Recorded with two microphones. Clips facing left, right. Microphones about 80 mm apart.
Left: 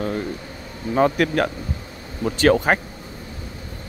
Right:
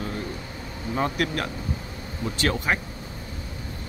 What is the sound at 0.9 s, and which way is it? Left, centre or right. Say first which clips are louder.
A man's voice: left 8 dB; left.